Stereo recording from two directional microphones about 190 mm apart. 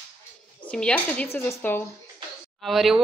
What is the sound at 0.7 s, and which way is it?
Speech, 5° left (ahead or behind).